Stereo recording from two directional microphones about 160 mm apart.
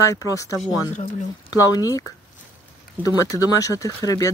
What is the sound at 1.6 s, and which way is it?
Speech, 25° left (ahead or behind).